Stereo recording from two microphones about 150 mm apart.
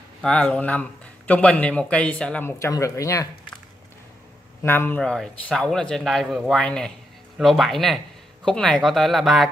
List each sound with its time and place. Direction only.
0.2 s speech: 5° left (ahead or behind)
2.6 s speech: 20° left (ahead or behind)
4.6 s a man's voice: 15° left (ahead or behind)